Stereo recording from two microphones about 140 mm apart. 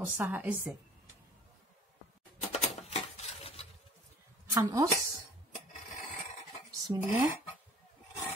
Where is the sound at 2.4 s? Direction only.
50° left (ahead or behind).